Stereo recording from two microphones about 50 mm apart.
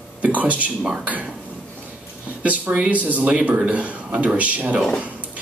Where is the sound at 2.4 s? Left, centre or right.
Right.